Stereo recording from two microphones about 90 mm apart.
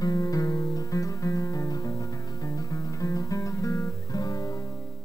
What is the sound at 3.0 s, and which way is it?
Music, 40° left (ahead or behind).